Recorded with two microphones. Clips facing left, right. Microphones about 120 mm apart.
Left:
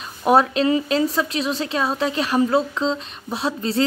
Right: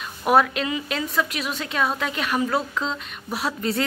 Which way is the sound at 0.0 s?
30° left (ahead or behind).